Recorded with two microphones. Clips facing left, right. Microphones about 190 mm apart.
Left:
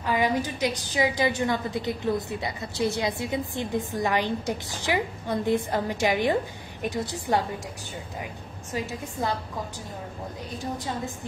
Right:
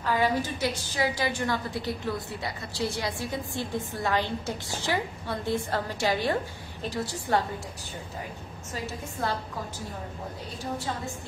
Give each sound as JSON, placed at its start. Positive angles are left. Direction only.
{"t": 0.0, "sound": "a woman's voice", "side_deg": 15}
{"t": 9.2, "sound": "a woman's voice", "side_deg": 15}